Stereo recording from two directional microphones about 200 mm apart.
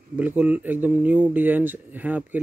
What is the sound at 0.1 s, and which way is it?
Speech, 10° right (ahead or behind).